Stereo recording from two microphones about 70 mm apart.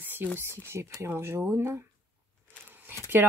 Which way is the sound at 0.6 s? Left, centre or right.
Right.